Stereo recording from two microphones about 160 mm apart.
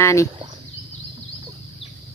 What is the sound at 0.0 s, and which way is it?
Speech, 20° left (ahead or behind).